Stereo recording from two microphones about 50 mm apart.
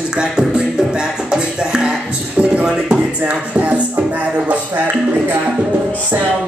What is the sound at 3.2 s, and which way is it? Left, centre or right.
Music, right.